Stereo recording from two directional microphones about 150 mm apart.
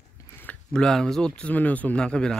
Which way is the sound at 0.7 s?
5° left (ahead or behind).